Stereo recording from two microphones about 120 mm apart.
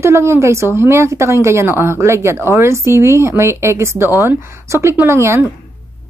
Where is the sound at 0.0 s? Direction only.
20° right (ahead or behind).